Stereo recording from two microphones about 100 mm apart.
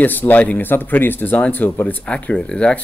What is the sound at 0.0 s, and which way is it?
Speech, 20° left (ahead or behind).